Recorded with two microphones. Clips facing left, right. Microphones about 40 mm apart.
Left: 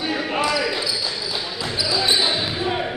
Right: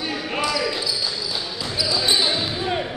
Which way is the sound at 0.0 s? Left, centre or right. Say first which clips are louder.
Left 3 dB; centre.